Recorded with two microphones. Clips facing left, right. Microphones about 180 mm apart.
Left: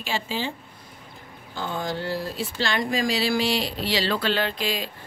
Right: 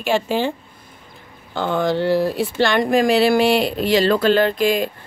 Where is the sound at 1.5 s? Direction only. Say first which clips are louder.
Right 10 dB; 70° right (ahead or behind).